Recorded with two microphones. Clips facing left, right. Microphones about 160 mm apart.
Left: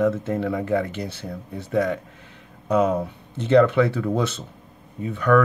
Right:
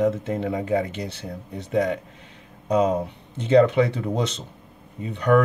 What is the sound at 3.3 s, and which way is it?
Speech, 15° right (ahead or behind).